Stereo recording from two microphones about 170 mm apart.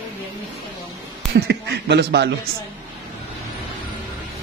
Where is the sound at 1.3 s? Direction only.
75° right (ahead or behind).